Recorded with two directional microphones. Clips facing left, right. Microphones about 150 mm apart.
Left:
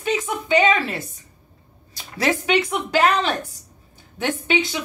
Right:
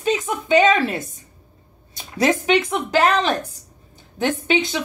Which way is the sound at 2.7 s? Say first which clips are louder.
Right 1 dB; 35° right (ahead or behind).